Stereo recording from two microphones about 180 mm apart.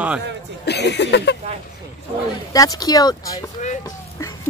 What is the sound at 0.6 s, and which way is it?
Speech, 70° left (ahead or behind).